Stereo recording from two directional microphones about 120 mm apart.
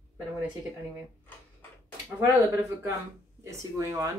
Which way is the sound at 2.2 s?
30° right (ahead or behind).